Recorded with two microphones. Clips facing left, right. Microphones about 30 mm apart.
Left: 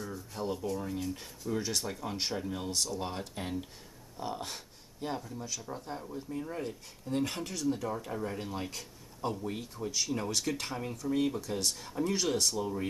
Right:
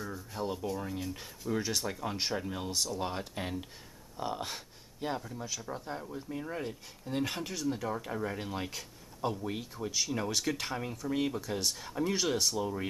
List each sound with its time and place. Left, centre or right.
0.0 s speech: centre